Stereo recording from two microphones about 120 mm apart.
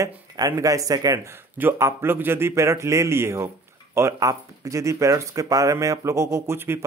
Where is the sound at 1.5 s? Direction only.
20° right (ahead or behind).